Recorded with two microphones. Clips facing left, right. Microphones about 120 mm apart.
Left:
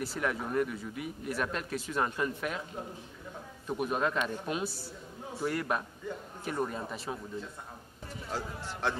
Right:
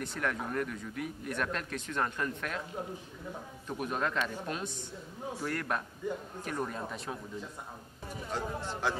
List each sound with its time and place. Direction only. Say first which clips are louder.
0.0 s a man's voice: left 2 dB; 5° left (ahead or behind)
3.6 s a man's voice: left 3 dB; 5° left (ahead or behind)
8.3 s a man's voice: right 2 dB; centre (ahead or behind)